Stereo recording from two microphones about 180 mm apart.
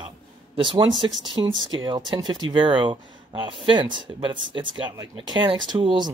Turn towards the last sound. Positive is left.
turn(degrees=-25)  # may be behind; listen again after turning